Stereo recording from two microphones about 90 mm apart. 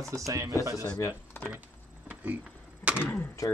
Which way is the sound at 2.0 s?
15° right (ahead or behind).